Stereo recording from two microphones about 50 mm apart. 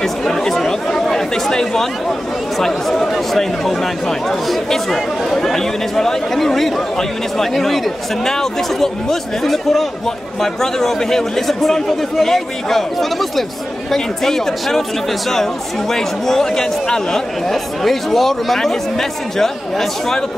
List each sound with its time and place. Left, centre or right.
0.0 s speech: centre